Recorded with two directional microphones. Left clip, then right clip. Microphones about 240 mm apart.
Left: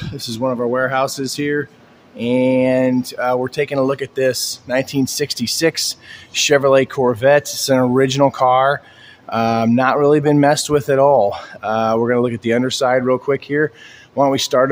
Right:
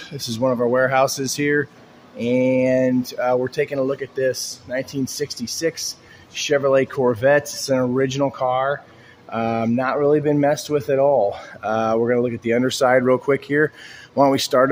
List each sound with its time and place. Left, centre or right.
0.0 s speech: centre